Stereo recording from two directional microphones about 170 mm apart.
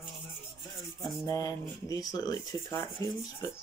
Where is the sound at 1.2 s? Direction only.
20° left (ahead or behind).